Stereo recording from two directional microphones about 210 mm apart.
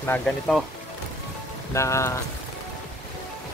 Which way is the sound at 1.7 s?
15° left (ahead or behind).